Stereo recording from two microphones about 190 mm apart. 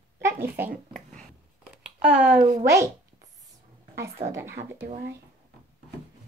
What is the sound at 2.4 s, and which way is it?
Speech, 50° right (ahead or behind).